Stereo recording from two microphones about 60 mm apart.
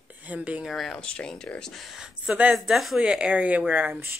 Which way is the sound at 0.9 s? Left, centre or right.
Centre.